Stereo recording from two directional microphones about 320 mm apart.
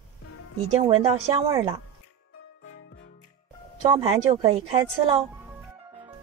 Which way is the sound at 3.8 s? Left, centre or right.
Centre.